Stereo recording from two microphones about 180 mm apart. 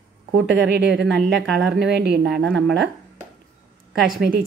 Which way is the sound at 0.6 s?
80° right.